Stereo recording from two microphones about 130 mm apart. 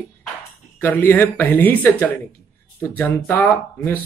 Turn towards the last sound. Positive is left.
turn(degrees=15)  # may be behind; listen again after turning